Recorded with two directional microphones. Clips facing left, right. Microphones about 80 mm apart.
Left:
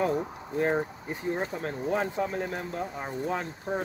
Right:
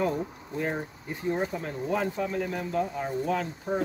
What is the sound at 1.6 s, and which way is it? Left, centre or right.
Speech, left.